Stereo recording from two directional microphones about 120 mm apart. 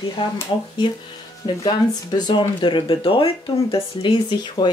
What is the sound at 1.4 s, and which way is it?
Speech, 35° left (ahead or behind).